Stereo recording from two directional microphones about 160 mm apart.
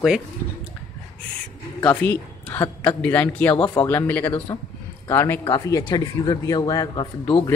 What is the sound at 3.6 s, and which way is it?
Speech, 25° left (ahead or behind).